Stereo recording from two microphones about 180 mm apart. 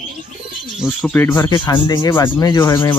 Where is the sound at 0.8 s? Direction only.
10° left (ahead or behind).